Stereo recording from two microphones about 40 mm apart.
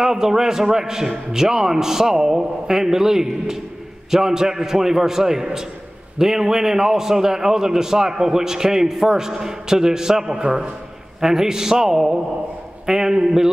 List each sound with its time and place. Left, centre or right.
0.0 s a man's voice: centre